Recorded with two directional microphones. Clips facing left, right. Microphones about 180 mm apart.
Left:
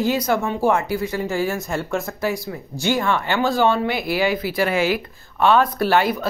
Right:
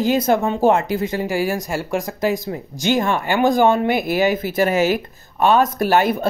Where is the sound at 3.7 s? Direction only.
50° right (ahead or behind).